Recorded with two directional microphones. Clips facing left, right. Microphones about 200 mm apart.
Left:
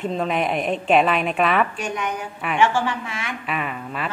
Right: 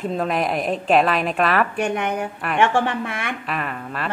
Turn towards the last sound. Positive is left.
turn(degrees=0)  # may be behind; listen again after turning